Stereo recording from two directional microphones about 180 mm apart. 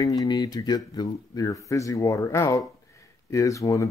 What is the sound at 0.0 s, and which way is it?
Speech, 20° left (ahead or behind).